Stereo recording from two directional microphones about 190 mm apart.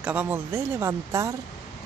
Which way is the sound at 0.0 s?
10° right (ahead or behind).